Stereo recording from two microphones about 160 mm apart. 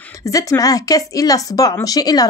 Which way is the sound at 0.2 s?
20° left (ahead or behind).